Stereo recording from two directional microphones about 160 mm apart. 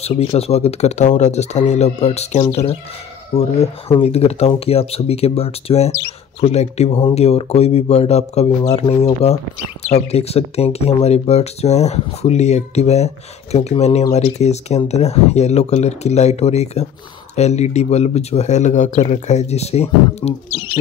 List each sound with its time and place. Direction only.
0.0 s speech: 40° left (ahead or behind)